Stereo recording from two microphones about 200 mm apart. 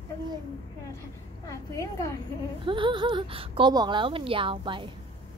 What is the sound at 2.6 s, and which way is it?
Speech, 25° right (ahead or behind).